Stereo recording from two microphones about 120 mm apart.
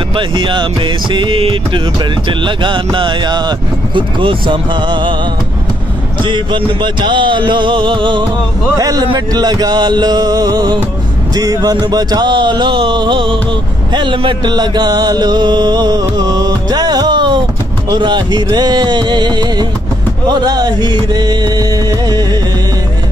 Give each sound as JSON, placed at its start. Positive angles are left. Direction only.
{"t": 0.1, "sound": "music", "side_deg": -45}
{"t": 6.2, "sound": "music", "side_deg": -40}
{"t": 8.7, "sound": "a man's voice", "side_deg": -30}
{"t": 9.0, "sound": "music", "side_deg": -40}